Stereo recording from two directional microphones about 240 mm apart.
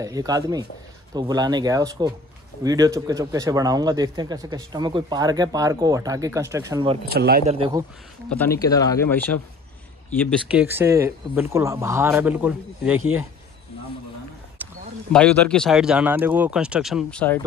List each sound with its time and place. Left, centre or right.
0.0 s speech: centre
7.1 s speech: right
7.4 s speech: right
8.3 s speech: centre
10.5 s speech: centre
14.6 s a sound: centre
15.1 s speech: centre